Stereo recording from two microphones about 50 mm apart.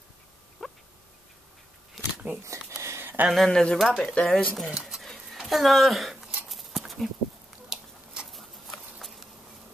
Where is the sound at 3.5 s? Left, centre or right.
Centre.